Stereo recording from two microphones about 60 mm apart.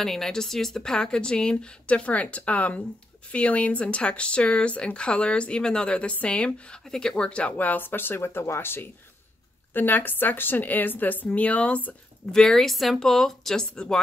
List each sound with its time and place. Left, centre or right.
0.0 s a woman's voice: centre; by 11.9 s left
12.3 s a woman's voice: centre